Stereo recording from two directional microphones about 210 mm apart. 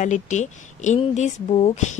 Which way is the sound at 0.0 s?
35° left (ahead or behind).